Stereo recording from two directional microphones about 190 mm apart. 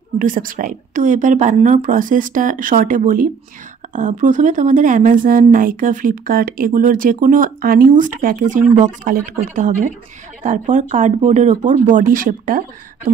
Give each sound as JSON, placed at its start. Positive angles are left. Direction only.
{"t": 0.2, "sound": "speech", "side_deg": -45}